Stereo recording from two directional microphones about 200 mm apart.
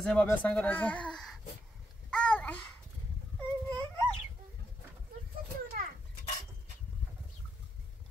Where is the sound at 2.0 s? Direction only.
5° left (ahead or behind).